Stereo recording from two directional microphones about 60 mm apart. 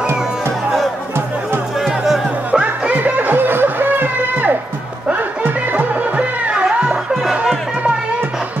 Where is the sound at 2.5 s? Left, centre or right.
Centre.